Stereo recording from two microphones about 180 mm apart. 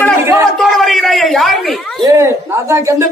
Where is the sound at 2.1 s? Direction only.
15° right (ahead or behind).